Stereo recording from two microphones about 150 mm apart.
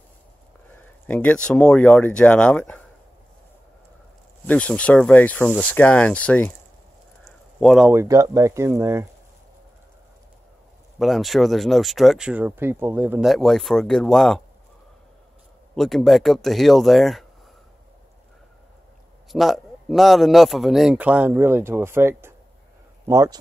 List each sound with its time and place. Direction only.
0.7 s speech: 10° left (ahead or behind)
4.5 s a man's voice: 10° left (ahead or behind)
7.2 s a sound: centre (ahead or behind)
7.9 s speech: 20° right (ahead or behind)
11.0 s a man's voice: centre (ahead or behind)
13.3 s a man's voice: centre (ahead or behind)
15.7 s a man's voice: centre (ahead or behind)
19.3 s a man's voice: centre (ahead or behind); by 23.3 s 20° right (ahead or behind)